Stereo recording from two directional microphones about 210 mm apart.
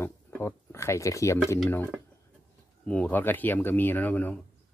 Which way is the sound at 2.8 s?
5° left (ahead or behind).